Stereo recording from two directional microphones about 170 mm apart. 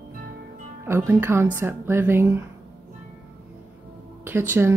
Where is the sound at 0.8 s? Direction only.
15° right (ahead or behind).